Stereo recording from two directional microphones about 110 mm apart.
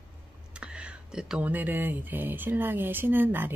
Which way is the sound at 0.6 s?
10° right (ahead or behind).